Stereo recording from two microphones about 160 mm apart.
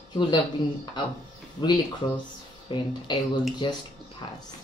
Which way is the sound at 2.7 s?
30° left (ahead or behind).